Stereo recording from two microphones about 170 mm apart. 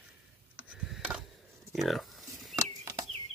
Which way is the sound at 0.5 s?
5° right (ahead or behind).